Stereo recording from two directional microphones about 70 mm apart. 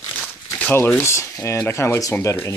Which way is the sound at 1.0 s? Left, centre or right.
Left.